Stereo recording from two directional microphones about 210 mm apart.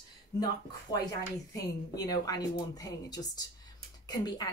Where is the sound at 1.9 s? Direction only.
15° left (ahead or behind).